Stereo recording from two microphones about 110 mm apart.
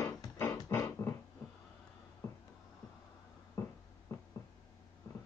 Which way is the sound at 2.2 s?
25° left (ahead or behind).